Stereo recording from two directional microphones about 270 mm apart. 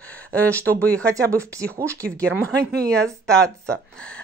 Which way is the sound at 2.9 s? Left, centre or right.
Centre.